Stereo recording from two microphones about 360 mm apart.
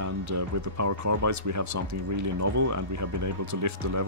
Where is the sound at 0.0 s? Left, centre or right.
Right.